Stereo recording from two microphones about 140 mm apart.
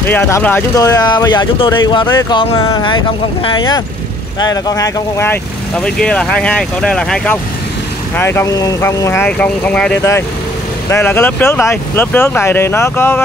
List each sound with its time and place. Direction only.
0.0 s speech: 15° left (ahead or behind)
0.7 s speech: 25° left (ahead or behind)
5.8 s speech: 5° left (ahead or behind)